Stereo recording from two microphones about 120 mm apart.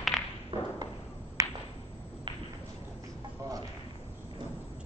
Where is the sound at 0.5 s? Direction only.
50° right (ahead or behind).